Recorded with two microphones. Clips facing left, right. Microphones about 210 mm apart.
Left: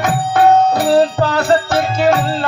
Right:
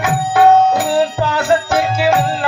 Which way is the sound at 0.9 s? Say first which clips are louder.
Left 3 dB; 40° left (ahead or behind).